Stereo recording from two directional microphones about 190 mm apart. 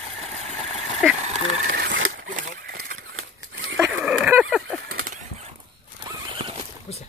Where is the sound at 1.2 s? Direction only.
35° right (ahead or behind).